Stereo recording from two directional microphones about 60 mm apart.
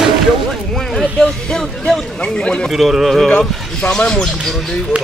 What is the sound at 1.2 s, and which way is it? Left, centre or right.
Speech, centre.